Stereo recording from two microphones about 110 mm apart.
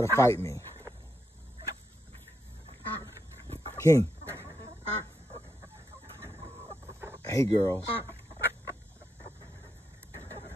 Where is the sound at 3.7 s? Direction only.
25° left (ahead or behind).